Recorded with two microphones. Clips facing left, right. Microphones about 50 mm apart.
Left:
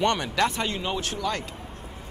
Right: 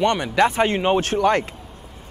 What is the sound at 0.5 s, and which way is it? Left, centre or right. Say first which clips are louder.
Speech: right 10 dB; right.